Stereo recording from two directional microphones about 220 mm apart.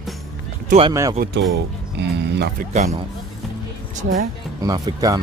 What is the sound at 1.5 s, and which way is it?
Speech, 50° right (ahead or behind).